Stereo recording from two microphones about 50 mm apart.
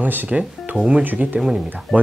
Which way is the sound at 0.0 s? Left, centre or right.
Right.